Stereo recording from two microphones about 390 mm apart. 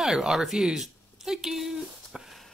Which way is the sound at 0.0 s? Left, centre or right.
Centre.